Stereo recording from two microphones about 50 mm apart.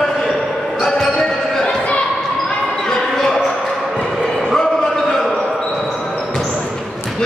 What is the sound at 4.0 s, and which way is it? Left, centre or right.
Bow-wow, centre.